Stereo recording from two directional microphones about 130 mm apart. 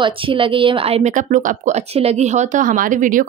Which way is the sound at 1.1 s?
80° right.